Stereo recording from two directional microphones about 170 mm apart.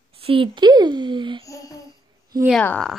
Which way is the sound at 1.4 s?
20° left (ahead or behind).